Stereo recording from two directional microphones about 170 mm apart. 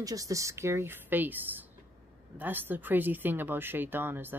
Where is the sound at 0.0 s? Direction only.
20° right (ahead or behind).